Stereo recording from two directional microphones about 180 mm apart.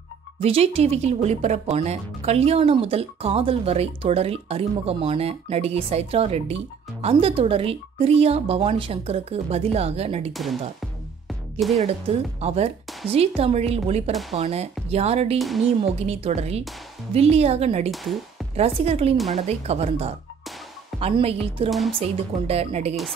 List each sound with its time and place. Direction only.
0.4 s speech: 35° right (ahead or behind)
11.8 s speech: 35° right (ahead or behind)
15.3 s speech: centre (ahead or behind)
16.1 s speech: 35° right (ahead or behind)
17.9 s speech: centre (ahead or behind)
18.6 s speech: 35° right (ahead or behind)
21.6 s speech: centre (ahead or behind)
22.5 s speech: 35° right (ahead or behind)